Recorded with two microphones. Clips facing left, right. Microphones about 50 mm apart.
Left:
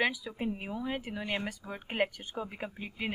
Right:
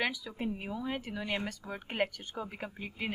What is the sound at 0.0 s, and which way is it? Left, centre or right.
A woman's voice, centre.